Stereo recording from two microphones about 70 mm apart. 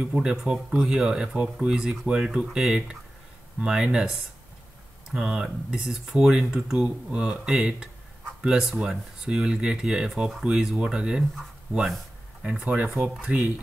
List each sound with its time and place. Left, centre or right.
0.1 s speech: centre
12.4 s speech: centre